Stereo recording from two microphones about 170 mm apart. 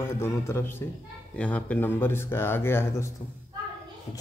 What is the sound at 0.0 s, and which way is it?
Speech, 15° left (ahead or behind).